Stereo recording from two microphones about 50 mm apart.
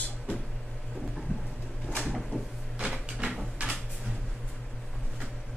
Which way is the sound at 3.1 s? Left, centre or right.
Centre.